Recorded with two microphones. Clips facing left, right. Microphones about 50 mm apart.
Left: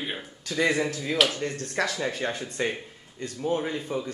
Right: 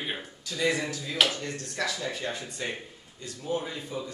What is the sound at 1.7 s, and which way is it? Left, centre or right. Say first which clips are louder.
Speech: left 3 dB; left.